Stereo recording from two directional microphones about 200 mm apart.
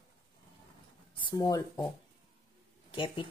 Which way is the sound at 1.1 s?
25° left (ahead or behind).